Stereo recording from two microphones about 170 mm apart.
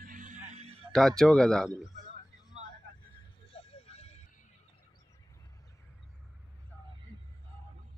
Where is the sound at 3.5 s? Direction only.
35° left (ahead or behind).